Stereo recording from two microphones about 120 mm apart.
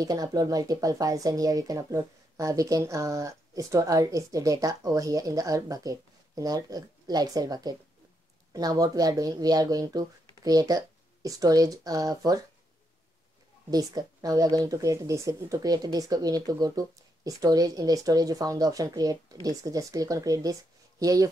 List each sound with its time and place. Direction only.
0.0 s speech: 30° right (ahead or behind)
13.7 s speech: 30° right (ahead or behind)